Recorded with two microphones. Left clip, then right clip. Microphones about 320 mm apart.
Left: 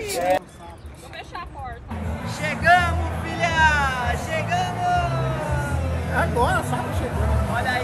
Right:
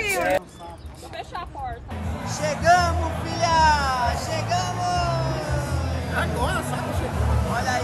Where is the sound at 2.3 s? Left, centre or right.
Centre.